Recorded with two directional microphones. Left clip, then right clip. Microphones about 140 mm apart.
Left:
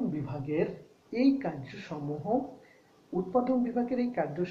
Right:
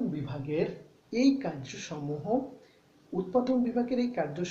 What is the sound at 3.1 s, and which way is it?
Speech, 20° right (ahead or behind).